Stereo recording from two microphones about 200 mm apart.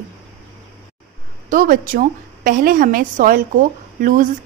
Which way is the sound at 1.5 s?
45° right (ahead or behind).